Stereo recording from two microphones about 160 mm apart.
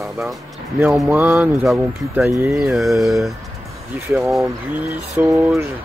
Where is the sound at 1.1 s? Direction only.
15° right (ahead or behind).